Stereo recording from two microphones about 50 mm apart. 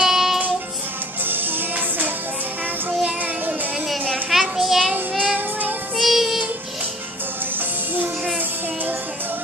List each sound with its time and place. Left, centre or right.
0.0 s music: centre
4.3 s a sound: centre
5.2 s music: right
5.9 s child singing: centre